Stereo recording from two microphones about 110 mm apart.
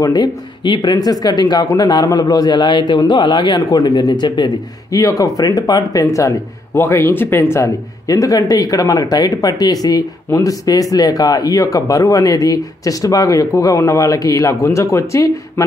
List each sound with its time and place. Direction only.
0.0 s a man's voice: 40° left (ahead or behind)
4.9 s a man's voice: 30° left (ahead or behind)